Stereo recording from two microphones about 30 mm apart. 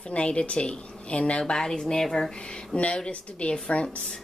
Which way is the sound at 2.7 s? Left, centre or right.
Left.